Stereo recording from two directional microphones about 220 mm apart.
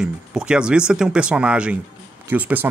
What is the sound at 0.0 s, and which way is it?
Speech, 5° right (ahead or behind).